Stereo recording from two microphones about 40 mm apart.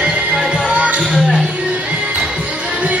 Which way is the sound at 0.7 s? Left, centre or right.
Right.